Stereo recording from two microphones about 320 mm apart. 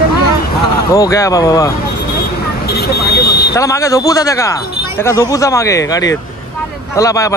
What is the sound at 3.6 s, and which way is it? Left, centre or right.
Speech, centre.